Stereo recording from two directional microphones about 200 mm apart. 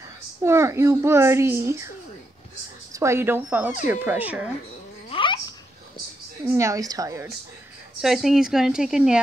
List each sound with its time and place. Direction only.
0.4 s a child's voice: 15° right (ahead or behind)
2.9 s a child's voice: 15° right (ahead or behind)
5.1 s babbling: 25° left (ahead or behind)
6.4 s a child's voice: 15° right (ahead or behind)
8.0 s a woman's voice: centre (ahead or behind)